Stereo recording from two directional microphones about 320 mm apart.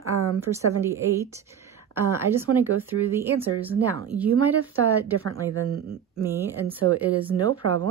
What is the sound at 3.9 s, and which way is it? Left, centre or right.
Speech, right.